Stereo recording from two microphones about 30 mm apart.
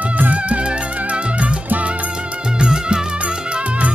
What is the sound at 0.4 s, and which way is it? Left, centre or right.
Music, right.